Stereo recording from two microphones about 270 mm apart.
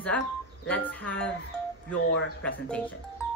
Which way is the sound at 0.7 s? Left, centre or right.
Centre.